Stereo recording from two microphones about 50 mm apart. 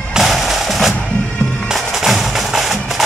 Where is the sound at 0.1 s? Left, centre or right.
Centre.